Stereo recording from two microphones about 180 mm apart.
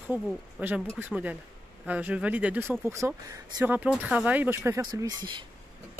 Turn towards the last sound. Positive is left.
turn(degrees=-25)  # may be behind; listen again after turning